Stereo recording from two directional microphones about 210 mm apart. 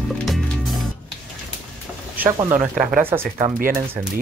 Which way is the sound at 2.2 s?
10° right (ahead or behind).